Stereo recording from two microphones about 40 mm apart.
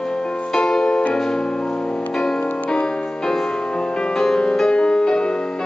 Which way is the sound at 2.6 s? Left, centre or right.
Left.